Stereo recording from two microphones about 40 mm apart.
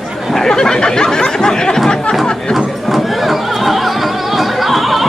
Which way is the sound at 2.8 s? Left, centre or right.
Centre.